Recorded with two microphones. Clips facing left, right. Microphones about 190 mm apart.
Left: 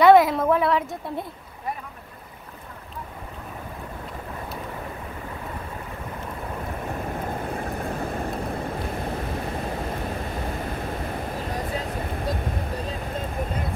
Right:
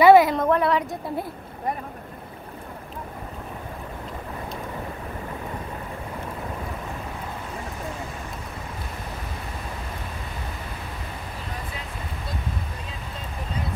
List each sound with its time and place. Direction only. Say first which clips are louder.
0.0 s a woman's voice: right 1 dB; centre (ahead or behind)
7.4 s vehicle: left 4 dB; 55° left (ahead or behind)